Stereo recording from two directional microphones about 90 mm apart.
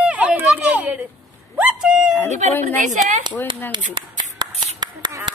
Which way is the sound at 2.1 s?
25° left (ahead or behind).